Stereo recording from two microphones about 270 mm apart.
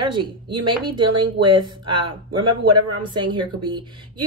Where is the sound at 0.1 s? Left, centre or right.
Centre.